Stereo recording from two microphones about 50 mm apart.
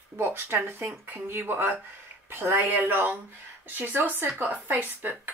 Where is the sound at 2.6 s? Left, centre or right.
Right.